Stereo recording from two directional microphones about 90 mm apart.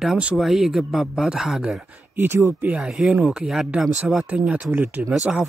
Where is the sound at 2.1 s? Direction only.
25° right (ahead or behind).